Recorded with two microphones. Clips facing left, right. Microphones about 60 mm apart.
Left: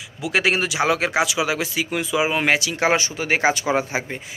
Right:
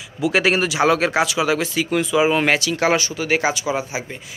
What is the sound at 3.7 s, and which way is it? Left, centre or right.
Speech, left.